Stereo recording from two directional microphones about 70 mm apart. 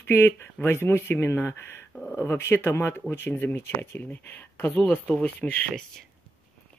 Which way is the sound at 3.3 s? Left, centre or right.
Left.